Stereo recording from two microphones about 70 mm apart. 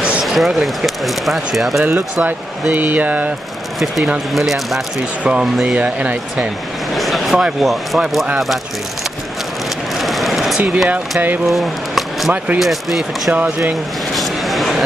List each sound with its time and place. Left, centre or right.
0.2 s speech: centre
2.7 s speech: right
4.3 s speech: centre
5.2 s speech: centre
7.0 s a sound: centre
7.6 s speech: centre
10.0 s a sound: centre
10.9 s speech: right
11.4 s a sound: centre
12.5 s speech: centre
14.1 s vehicle: centre